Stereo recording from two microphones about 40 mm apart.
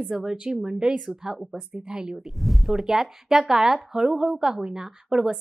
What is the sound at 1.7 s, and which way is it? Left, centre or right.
Speech, centre.